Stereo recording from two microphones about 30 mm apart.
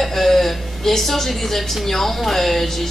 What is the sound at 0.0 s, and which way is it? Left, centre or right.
A woman's voice, centre.